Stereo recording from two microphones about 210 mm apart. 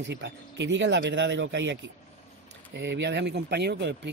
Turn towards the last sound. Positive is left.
turn(degrees=-55)  # may be behind; listen again after turning